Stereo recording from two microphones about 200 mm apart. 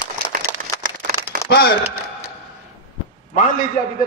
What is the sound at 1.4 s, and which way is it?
Speech, 55° left (ahead or behind).